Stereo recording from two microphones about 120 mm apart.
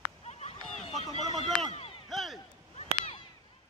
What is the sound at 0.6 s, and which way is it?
Run, 5° left (ahead or behind).